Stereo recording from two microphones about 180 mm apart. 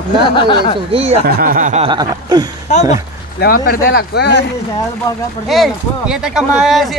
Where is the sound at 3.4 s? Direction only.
55° left (ahead or behind).